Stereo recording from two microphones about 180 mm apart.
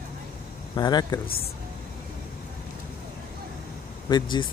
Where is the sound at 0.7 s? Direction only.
25° left (ahead or behind).